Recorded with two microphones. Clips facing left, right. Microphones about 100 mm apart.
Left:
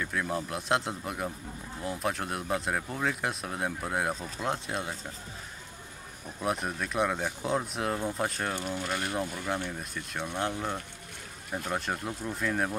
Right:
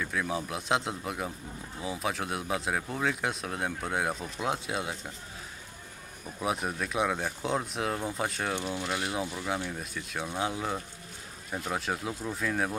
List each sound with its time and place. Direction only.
0.0 s speech: centre (ahead or behind)
6.4 s speech: centre (ahead or behind)